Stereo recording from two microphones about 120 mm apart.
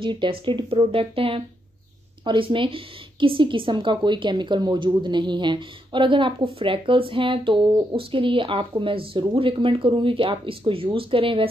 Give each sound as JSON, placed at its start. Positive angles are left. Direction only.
{"t": 0.0, "sound": "a woman's voice", "side_deg": -45}